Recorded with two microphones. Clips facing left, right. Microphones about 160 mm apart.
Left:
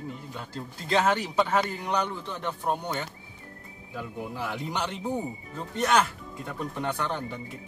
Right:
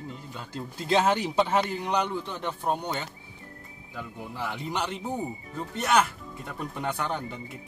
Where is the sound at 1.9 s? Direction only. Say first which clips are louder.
Right 1 dB; 15° right (ahead or behind).